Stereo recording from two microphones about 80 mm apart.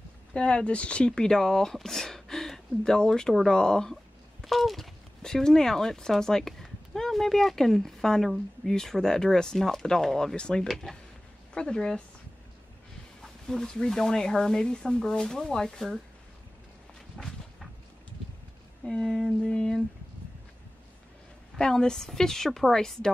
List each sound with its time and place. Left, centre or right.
0.3 s speech: centre
13.2 s speech: centre
17.2 s a sound: centre
18.9 s speech: centre
21.5 s speech: centre